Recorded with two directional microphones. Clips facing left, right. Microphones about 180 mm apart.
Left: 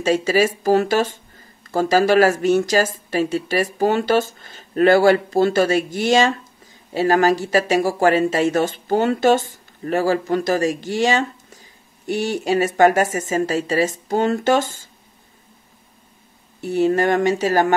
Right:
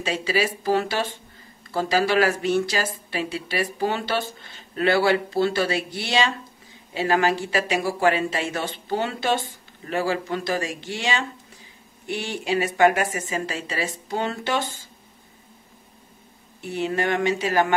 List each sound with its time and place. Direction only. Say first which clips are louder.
0.0 s speech: left 7 dB; 45° left (ahead or behind)
16.6 s speech: left 7 dB; 40° left (ahead or behind)